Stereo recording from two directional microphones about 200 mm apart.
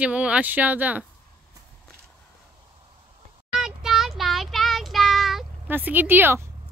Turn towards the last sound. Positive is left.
turn(degrees=-10)  # may be behind; listen again after turning